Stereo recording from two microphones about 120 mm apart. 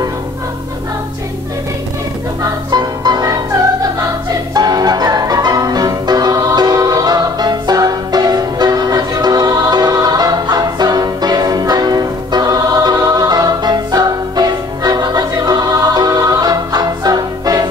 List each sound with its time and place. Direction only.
2.7 s music: 35° right (ahead or behind)
4.6 s music: 35° right (ahead or behind)